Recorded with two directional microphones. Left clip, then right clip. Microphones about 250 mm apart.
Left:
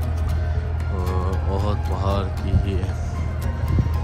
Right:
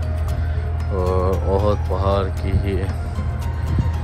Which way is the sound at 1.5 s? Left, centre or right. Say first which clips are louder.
Right 7 dB; centre.